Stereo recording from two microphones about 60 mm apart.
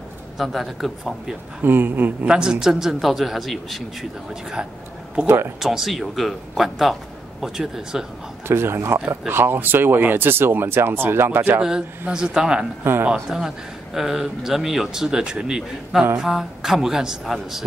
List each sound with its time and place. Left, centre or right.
0.4 s a man's voice: centre
1.6 s speech: right
2.2 s a man's voice: centre
4.3 s speech: centre
5.2 s speech: right
5.6 s a man's voice: centre
8.5 s speech: right
12.1 s a man's voice: centre